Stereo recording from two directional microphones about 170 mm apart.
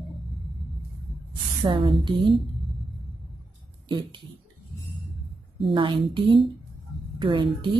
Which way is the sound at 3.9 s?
25° right (ahead or behind).